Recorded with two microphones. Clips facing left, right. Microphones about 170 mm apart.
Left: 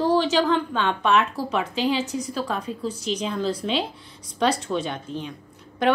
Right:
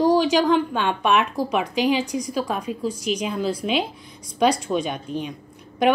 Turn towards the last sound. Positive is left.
turn(degrees=-15)  # may be behind; listen again after turning